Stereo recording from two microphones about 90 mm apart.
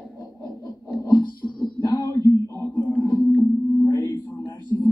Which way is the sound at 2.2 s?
45° right (ahead or behind).